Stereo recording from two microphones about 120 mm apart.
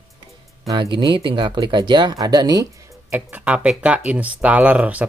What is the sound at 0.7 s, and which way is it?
Speech, 40° right (ahead or behind).